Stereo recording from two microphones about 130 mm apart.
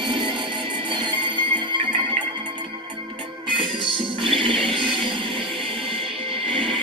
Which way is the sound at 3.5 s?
40° right (ahead or behind).